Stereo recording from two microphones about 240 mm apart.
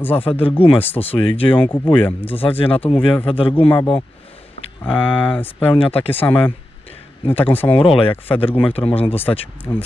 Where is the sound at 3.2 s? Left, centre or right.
Left.